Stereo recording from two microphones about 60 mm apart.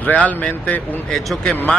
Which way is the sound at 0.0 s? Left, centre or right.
Left.